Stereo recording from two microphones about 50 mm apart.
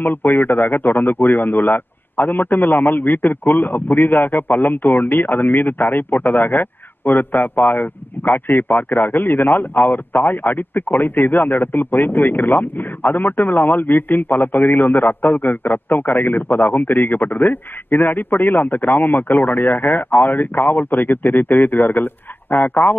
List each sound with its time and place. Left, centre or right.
0.0 s a man's voice: left